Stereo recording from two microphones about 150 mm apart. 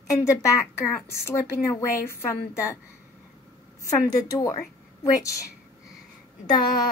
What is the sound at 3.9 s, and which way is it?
Speech, 25° left (ahead or behind).